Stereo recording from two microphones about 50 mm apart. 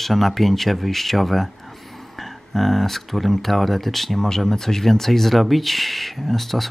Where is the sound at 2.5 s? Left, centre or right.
Centre.